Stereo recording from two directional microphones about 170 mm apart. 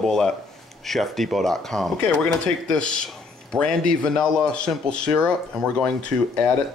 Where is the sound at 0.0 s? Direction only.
Centre (ahead or behind).